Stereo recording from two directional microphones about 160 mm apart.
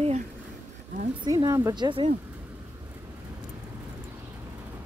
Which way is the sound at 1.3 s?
20° right (ahead or behind).